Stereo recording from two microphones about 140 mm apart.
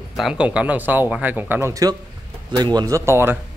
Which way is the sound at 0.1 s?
5° right (ahead or behind).